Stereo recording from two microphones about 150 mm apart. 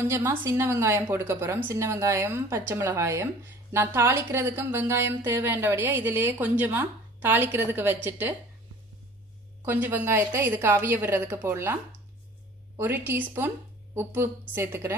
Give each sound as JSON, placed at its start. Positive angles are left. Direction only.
{"t": 0.0, "sound": "speech", "side_deg": -15}
{"t": 9.7, "sound": "speech", "side_deg": -10}